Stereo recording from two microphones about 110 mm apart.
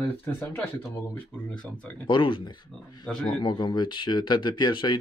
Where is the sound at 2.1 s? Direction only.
45° left (ahead or behind).